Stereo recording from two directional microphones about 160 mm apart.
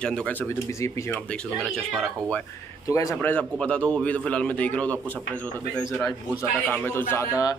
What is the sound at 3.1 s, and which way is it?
A man's voice, 10° left (ahead or behind).